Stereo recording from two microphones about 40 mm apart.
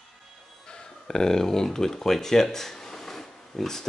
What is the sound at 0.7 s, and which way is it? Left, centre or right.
Speech, centre.